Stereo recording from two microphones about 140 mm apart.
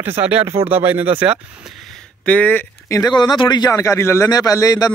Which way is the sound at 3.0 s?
30° left (ahead or behind).